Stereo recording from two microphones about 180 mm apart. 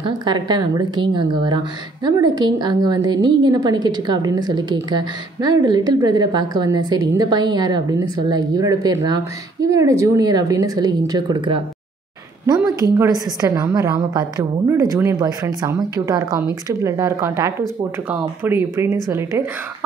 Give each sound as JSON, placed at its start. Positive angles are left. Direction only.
{"t": 0.0, "sound": "a woman's voice", "side_deg": -25}
{"t": 12.9, "sound": "a woman's voice", "side_deg": -15}